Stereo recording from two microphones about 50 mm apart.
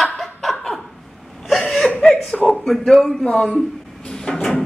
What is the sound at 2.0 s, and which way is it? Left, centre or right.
Chuckle, centre.